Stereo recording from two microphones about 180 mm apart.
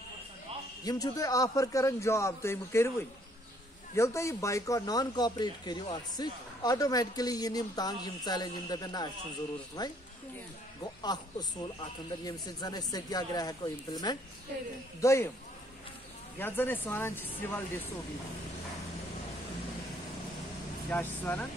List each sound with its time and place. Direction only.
0.8 s speech: 20° left (ahead or behind)
16.3 s speech: 10° left (ahead or behind)
20.9 s speech: 10° left (ahead or behind)